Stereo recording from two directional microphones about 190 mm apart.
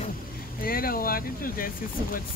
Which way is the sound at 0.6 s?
50° left (ahead or behind).